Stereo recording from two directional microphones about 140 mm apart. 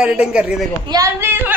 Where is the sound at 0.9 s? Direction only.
20° right (ahead or behind).